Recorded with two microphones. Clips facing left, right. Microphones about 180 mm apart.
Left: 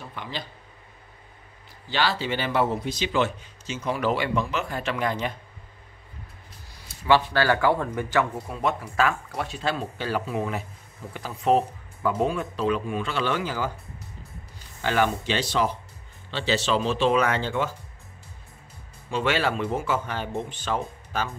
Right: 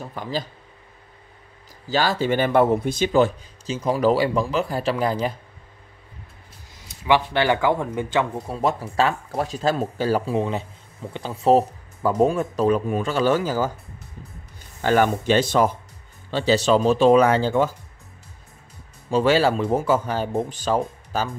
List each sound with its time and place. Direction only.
0.0 s speech: 40° right (ahead or behind)
1.9 s a man's voice: 45° right (ahead or behind)
7.1 s speech: 15° right (ahead or behind)
8.5 s a man's voice: 35° right (ahead or behind)
14.8 s a man's voice: 45° right (ahead or behind)
19.0 s a man's voice: 35° right (ahead or behind)